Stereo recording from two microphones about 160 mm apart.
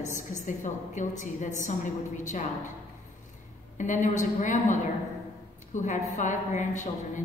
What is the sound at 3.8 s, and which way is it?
A woman's voice, 50° left (ahead or behind).